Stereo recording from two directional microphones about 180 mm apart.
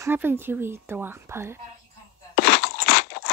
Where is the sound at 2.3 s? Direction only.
60° left (ahead or behind).